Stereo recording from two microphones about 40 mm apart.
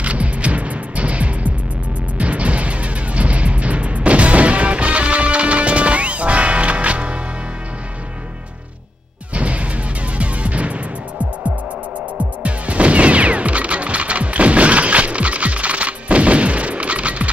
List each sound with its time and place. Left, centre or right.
0.0 s music: right
9.3 s music: right
12.4 s music: right